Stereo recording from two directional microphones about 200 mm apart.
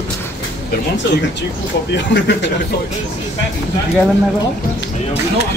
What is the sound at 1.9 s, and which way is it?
Speech, 60° left (ahead or behind).